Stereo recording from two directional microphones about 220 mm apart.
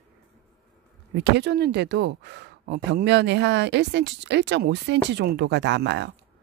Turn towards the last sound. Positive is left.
turn(degrees=-50)  # may be behind; listen again after turning